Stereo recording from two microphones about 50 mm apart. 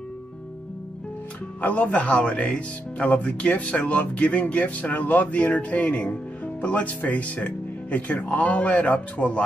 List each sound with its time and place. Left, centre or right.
1.6 s speech: left